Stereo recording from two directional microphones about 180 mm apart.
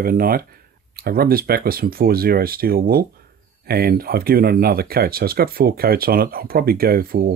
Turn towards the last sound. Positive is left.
turn(degrees=-55)  # may be behind; listen again after turning